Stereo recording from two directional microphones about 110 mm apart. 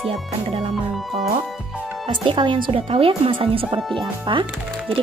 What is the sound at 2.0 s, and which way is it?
Speech, 50° right (ahead or behind).